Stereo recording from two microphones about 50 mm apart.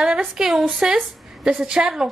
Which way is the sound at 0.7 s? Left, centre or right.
Centre.